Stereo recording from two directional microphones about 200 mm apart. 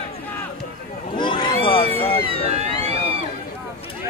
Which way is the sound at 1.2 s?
25° left (ahead or behind).